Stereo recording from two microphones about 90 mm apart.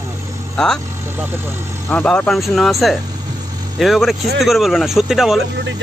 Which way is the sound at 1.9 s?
15° left (ahead or behind).